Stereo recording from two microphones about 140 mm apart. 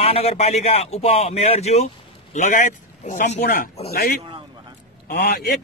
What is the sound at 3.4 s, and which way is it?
A man's voice, 90° left.